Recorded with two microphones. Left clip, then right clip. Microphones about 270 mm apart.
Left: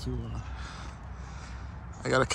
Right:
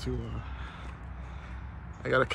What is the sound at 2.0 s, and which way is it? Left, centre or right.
Speech, centre.